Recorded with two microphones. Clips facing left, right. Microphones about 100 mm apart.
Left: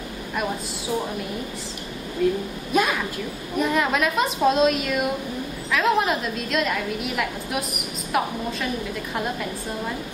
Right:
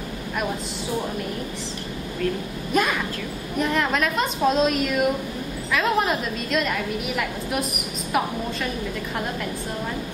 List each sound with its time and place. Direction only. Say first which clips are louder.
2.2 s a woman's voice: left 4 dB; 15° left (ahead or behind)
2.7 s a woman's voice: left 1 dB; centre (ahead or behind)